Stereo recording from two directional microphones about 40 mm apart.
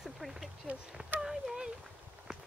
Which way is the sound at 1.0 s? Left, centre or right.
Centre.